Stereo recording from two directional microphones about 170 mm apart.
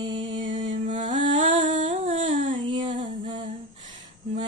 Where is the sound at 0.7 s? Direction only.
45° right (ahead or behind).